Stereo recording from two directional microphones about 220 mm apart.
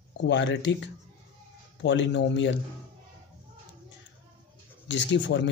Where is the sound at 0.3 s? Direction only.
55° left (ahead or behind).